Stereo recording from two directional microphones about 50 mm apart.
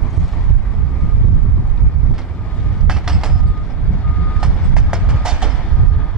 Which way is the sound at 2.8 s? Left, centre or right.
Centre.